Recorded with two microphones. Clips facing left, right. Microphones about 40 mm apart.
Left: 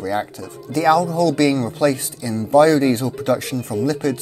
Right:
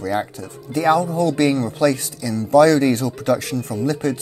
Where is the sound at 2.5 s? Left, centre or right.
Left.